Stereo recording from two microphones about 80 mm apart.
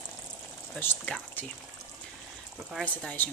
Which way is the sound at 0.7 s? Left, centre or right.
Left.